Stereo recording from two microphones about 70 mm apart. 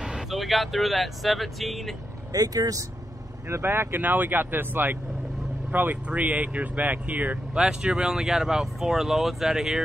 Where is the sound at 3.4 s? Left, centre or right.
Right.